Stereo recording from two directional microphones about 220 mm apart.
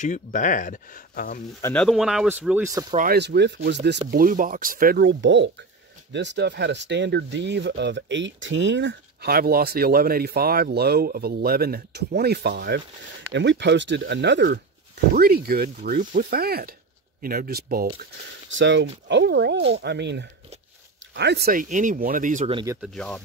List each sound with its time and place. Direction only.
0.0 s speech: 35° left (ahead or behind)
1.6 s speech: 5° left (ahead or behind); by 2.8 s 10° right (ahead or behind)
3.1 s speech: 50° right (ahead or behind)
4.1 s speech: 40° right (ahead or behind)
18.5 s speech: 55° right (ahead or behind); by 22.6 s 35° right (ahead or behind)
22.8 s speech: 5° left (ahead or behind)